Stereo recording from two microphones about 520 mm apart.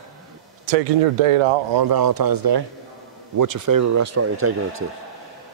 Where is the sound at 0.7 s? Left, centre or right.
Right.